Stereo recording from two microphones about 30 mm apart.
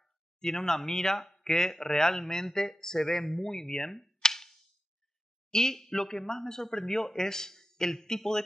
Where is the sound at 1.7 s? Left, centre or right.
Centre.